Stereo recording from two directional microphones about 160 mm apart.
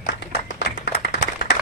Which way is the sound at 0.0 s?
70° left (ahead or behind).